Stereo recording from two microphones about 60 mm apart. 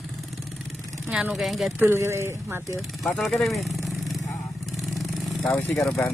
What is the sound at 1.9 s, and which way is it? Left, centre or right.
Speech, right.